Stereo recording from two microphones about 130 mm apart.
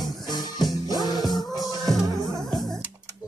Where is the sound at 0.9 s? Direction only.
30° left (ahead or behind).